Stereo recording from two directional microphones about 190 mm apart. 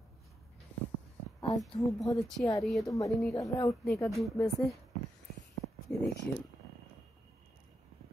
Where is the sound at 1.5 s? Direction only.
Centre (ahead or behind).